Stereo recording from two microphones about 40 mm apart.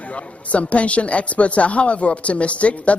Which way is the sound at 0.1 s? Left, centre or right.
Left.